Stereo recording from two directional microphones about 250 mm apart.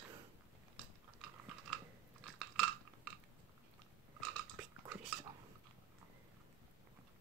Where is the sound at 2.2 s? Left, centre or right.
Centre.